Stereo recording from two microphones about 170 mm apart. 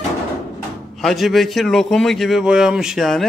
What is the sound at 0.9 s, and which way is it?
A man's voice, centre (ahead or behind).